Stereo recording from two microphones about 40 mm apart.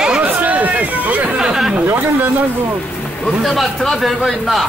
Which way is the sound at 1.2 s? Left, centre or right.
Centre.